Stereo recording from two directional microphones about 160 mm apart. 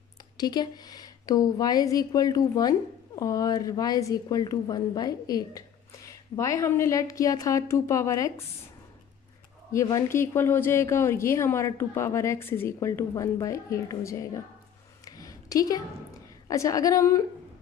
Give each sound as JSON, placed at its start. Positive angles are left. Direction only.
{"t": 0.4, "sound": "a woman's voice", "side_deg": 25}
{"t": 9.7, "sound": "speech", "side_deg": 20}
{"t": 15.0, "sound": "a sound", "side_deg": 20}
{"t": 16.4, "sound": "a woman's voice", "side_deg": 20}